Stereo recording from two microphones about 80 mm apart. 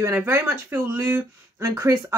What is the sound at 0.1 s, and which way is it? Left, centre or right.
Speech, right.